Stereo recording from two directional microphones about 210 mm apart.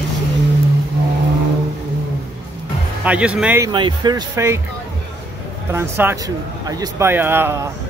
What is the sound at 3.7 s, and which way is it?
Speech, 20° right (ahead or behind).